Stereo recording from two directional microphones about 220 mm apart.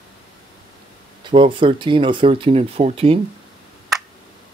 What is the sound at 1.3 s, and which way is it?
Speech, 25° right (ahead or behind).